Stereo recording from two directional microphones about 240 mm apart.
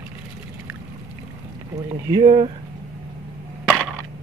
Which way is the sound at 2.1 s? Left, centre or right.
Right.